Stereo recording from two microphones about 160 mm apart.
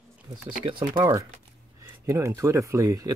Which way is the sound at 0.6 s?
30° right (ahead or behind).